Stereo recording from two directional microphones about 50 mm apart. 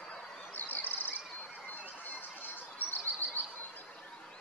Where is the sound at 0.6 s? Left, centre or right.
Left.